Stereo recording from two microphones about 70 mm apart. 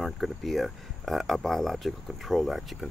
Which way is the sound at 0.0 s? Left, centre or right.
Centre.